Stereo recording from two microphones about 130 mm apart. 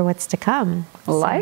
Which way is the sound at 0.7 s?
30° right (ahead or behind).